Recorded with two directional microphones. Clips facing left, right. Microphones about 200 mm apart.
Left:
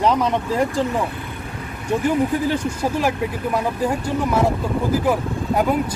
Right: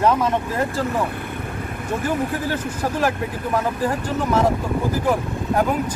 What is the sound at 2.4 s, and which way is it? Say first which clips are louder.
Speech: left 3 dB; 10° left (ahead or behind).